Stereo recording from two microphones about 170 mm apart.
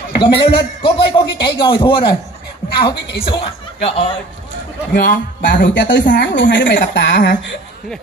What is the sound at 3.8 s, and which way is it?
Speech, 35° left (ahead or behind).